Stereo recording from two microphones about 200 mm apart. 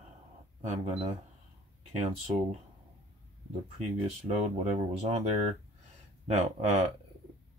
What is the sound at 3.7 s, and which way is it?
Speech, 30° right (ahead or behind).